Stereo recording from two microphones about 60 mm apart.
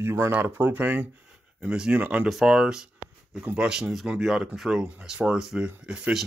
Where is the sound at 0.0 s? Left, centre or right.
Right.